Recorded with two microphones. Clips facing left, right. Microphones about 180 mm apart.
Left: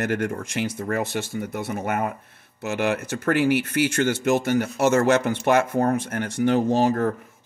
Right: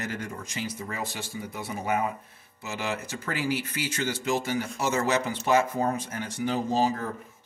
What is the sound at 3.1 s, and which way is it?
Speech, 60° left (ahead or behind).